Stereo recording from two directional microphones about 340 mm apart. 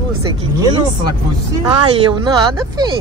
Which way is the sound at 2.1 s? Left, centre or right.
Centre.